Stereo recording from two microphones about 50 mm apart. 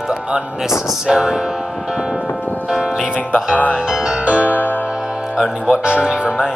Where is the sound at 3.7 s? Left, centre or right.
Centre.